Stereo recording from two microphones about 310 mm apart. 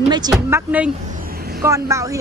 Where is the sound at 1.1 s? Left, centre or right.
Right.